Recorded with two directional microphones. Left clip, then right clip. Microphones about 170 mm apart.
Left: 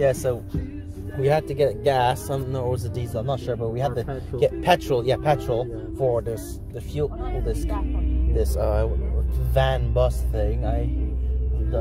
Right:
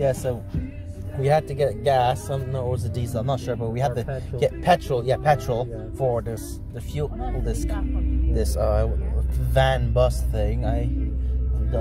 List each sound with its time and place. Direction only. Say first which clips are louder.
0.0 s music: left 2 dB; 15° right (ahead or behind)
1.2 s speech: even; centre (ahead or behind)
2.9 s music: even; 10° right (ahead or behind)
4.4 s speech: left 2 dB; centre (ahead or behind)
4.6 s speech: right 1 dB; 10° left (ahead or behind)
5.3 s speech: right 1 dB; 10° right (ahead or behind)
7.0 s music: left 2 dB; 10° right (ahead or behind)
8.4 s speech: even; centre (ahead or behind)
9.5 s music: right 2 dB; 10° right (ahead or behind)